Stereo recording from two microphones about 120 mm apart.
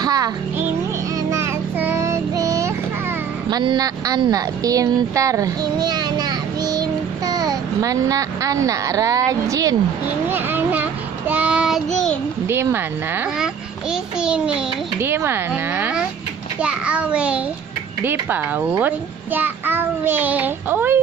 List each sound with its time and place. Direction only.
0.0 s music: 30° right (ahead or behind)
1.8 s child singing: 20° right (ahead or behind)
3.4 s speech: 35° right (ahead or behind)
10.3 s child singing: 15° right (ahead or behind); by 12.2 s 5° left (ahead or behind)
12.4 s speech: 20° right (ahead or behind)
14.2 s a child's voice: 5° right (ahead or behind)
15.0 s a child's voice: 20° right (ahead or behind)